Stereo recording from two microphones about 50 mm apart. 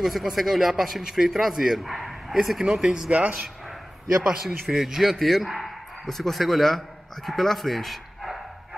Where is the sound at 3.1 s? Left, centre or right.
Right.